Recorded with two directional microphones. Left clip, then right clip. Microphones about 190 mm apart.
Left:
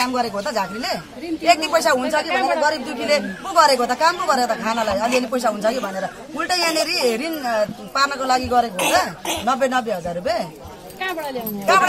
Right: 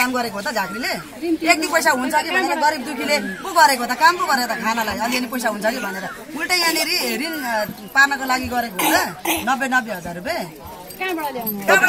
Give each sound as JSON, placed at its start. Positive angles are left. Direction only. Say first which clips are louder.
{"t": 0.0, "sound": "a woman's voice", "louder": "even", "side_deg": 15}
{"t": 2.2, "sound": "a woman's voice", "louder": "left 1 dB", "side_deg": -5}
{"t": 2.6, "sound": "a woman's voice", "louder": "right 1 dB", "side_deg": 25}